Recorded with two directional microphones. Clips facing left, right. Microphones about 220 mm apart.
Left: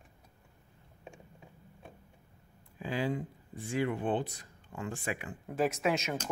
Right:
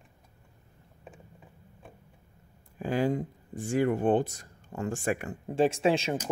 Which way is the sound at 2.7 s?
45° right (ahead or behind).